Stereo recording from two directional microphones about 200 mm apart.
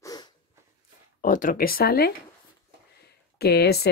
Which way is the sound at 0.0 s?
20° left (ahead or behind).